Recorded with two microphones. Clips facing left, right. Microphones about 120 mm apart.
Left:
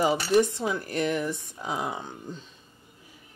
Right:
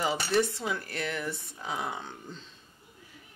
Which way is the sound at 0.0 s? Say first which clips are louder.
Left 5 dB; 15° left (ahead or behind).